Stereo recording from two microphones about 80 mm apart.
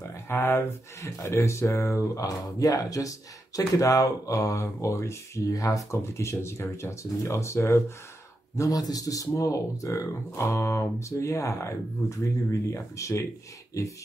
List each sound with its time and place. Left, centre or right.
0.3 s speech: left
2.2 s speech: left
8.5 s speech: left